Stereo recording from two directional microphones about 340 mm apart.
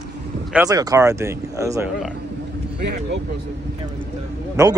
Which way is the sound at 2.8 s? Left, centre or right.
Right.